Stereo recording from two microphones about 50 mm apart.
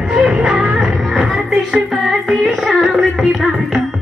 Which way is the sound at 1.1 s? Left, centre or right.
Right.